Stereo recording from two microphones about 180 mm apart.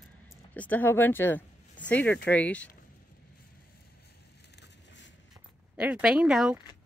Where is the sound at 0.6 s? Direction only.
10° left (ahead or behind).